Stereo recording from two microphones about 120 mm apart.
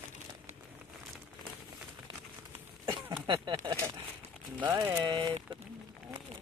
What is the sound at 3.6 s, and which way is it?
Speech, 45° right (ahead or behind).